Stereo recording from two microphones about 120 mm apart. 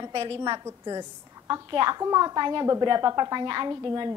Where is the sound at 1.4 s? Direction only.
35° right (ahead or behind).